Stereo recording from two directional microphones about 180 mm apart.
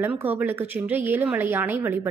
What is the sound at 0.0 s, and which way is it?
Speech, 10° right (ahead or behind).